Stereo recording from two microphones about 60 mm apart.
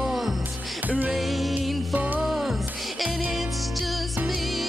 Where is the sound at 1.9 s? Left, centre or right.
Right.